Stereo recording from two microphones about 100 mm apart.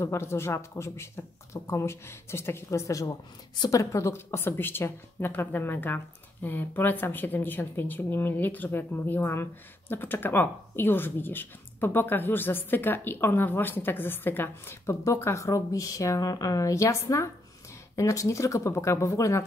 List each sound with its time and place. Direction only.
0.0 s speech: 25° left (ahead or behind)